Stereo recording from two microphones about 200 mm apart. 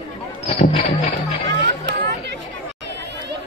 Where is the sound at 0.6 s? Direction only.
30° left (ahead or behind).